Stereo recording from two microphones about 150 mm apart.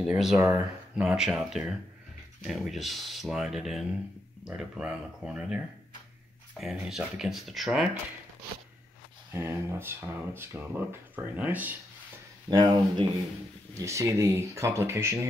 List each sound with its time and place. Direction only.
0.0 s speech: 5° right (ahead or behind)
6.6 s speech: 5° right (ahead or behind)
9.3 s speech: 15° right (ahead or behind)
12.4 s speech: 25° right (ahead or behind)